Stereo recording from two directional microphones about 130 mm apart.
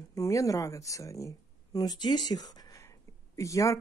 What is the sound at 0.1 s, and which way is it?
Speech, 25° left (ahead or behind).